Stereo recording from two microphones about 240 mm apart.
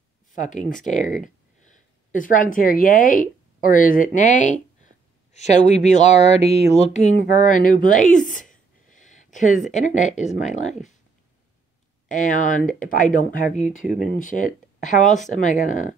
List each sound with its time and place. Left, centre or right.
0.3 s speech: left
5.9 s a sound: left
12.1 s speech: left